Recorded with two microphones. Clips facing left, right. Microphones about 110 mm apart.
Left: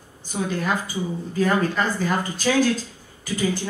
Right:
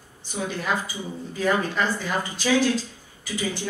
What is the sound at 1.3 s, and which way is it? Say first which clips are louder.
Speech: left 2 dB; 45° left (ahead or behind).